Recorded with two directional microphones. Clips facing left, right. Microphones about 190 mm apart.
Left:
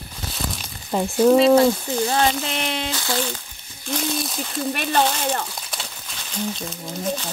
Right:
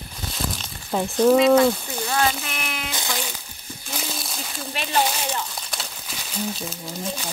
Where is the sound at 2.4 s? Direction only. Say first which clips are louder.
Left 6 dB; 30° left (ahead or behind).